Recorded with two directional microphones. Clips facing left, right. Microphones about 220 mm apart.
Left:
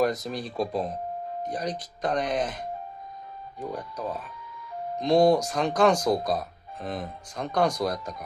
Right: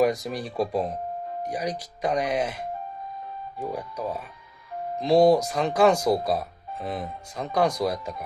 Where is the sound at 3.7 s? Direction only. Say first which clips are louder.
Right 1 dB; 10° right (ahead or behind).